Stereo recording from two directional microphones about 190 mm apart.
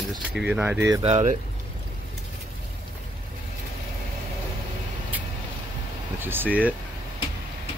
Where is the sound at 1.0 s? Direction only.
35° right (ahead or behind).